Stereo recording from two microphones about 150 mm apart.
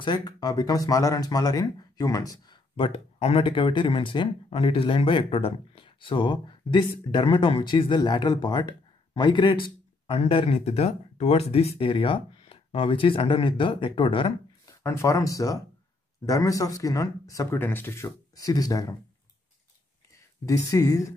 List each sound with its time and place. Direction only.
0.0 s speech: 30° left (ahead or behind)
14.7 s speech: 20° left (ahead or behind)
20.4 s speech: 20° left (ahead or behind)